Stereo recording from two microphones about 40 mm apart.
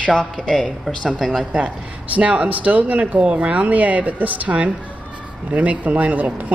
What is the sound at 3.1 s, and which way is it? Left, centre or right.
A woman's voice, right.